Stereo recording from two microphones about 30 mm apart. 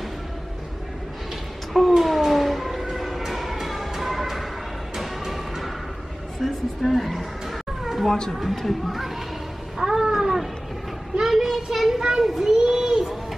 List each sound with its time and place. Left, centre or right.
1.7 s a sound: centre
2.8 s emergency vehicle: centre
4.9 s music: centre
6.4 s a sound: centre
8.5 s speech: centre
9.8 s cat: centre
11.1 s child singing: centre
11.7 s a child's voice: centre
12.5 s a sound: right